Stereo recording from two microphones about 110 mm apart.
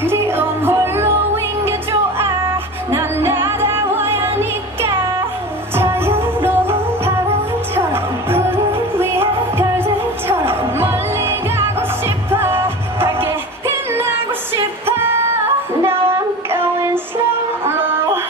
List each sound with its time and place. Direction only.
0.0 s music: 20° right (ahead or behind)
15.8 s child singing: 20° right (ahead or behind)
17.6 s music: 20° right (ahead or behind)